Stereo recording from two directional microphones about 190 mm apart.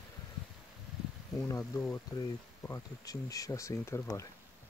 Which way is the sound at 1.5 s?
15° left (ahead or behind).